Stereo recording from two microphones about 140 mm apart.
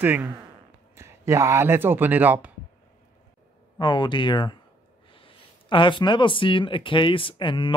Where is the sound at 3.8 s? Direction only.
30° left (ahead or behind).